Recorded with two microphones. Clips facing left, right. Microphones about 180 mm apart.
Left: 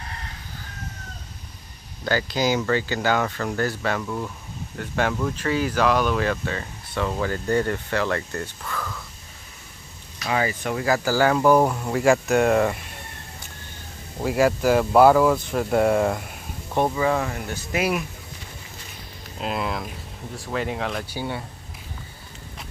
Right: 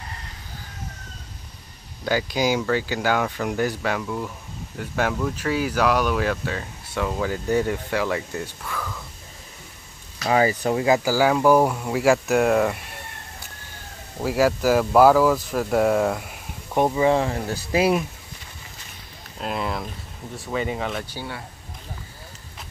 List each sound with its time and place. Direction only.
2.0 s speech: 10° right (ahead or behind)
10.2 s speech: 35° right (ahead or behind)
11.0 s speech: 10° right (ahead or behind)
14.2 s speech: 5° right (ahead or behind)
16.7 s speech: 20° right (ahead or behind)
19.4 s speech: centre (ahead or behind)
21.1 s speech: 15° left (ahead or behind)